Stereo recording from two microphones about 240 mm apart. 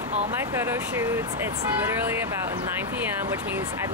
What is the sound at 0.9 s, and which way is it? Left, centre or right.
Speech, centre.